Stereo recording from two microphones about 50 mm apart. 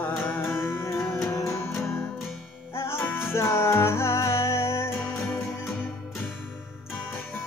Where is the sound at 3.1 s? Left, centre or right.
Left.